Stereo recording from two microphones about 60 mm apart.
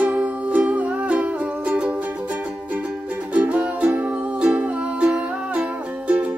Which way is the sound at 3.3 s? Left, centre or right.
Right.